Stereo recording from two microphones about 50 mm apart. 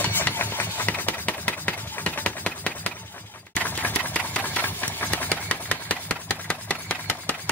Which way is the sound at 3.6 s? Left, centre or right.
Left.